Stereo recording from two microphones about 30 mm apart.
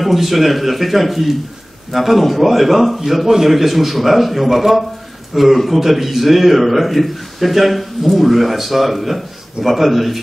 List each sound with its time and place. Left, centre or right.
0.0 s a man's voice: centre
3.3 s a man's voice: centre
3.5 s a man's voice: centre